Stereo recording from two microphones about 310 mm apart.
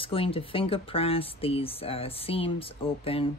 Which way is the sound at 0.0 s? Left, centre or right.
Centre.